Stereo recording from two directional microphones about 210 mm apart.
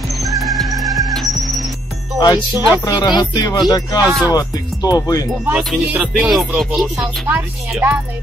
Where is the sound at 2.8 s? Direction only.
20° left (ahead or behind).